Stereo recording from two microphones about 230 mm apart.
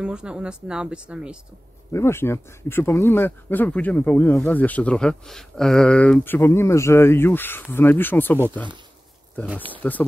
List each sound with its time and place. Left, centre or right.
0.0 s speech: centre
1.9 s speech: centre
9.8 s speech: centre